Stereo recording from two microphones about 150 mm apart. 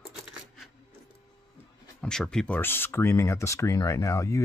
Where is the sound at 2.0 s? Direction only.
5° left (ahead or behind).